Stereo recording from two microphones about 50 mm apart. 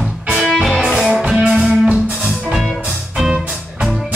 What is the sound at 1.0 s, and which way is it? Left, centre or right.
Music, right.